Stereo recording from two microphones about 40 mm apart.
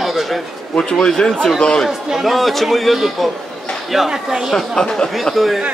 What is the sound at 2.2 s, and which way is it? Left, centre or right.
A man's voice, centre.